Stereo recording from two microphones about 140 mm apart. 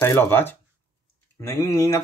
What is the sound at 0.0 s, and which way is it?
Speech, 15° left (ahead or behind).